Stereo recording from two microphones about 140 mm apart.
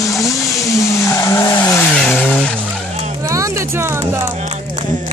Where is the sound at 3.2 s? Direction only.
20° right (ahead or behind).